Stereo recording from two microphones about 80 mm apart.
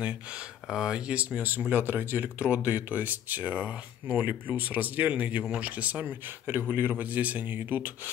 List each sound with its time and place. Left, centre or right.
0.0 s speech: centre